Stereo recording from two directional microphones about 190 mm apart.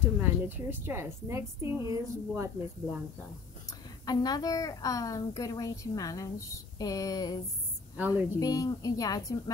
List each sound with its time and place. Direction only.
0.2 s a woman's voice: 10° right (ahead or behind)
4.0 s a child's voice: 20° left (ahead or behind)